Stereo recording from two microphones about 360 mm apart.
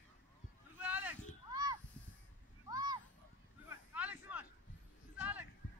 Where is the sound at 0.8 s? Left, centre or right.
Centre.